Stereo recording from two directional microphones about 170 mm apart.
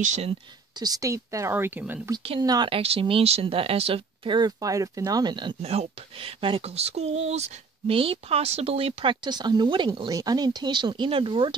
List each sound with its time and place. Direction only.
0.0 s speech: 40° right (ahead or behind)
0.7 s speech: 20° right (ahead or behind)
2.1 s speech: 30° right (ahead or behind)
5.6 s speech: 35° right (ahead or behind)